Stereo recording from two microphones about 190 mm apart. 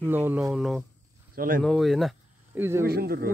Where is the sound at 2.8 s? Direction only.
55° right (ahead or behind).